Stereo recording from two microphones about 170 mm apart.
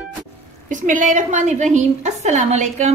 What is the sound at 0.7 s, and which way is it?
A woman's voice, 50° right (ahead or behind).